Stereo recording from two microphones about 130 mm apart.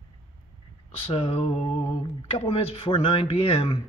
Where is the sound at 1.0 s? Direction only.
45° left (ahead or behind).